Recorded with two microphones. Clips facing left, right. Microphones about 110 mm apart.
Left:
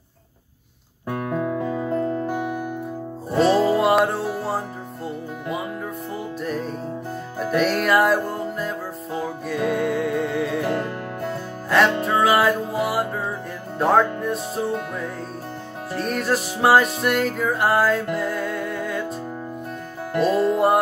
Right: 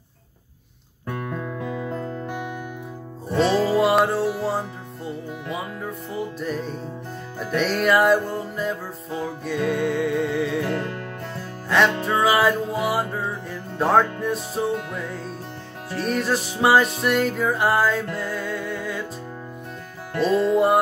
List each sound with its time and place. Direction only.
1.0 s music: 15° left (ahead or behind)
3.3 s music: 5° left (ahead or behind)
6.4 s music: centre (ahead or behind)
20.2 s music: 5° left (ahead or behind)